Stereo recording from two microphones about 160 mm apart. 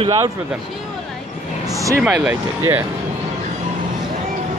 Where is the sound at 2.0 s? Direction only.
5° right (ahead or behind).